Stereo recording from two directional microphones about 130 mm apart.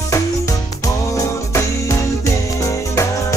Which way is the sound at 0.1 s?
25° left (ahead or behind).